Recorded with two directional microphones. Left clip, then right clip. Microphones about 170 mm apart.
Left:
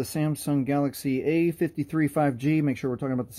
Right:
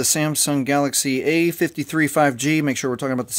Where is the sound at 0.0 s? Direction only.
15° right (ahead or behind).